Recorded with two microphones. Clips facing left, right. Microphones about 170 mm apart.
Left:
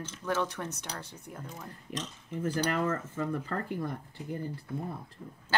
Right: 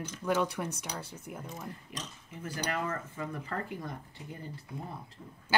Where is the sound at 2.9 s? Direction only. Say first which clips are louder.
Left 5 dB; 50° left (ahead or behind).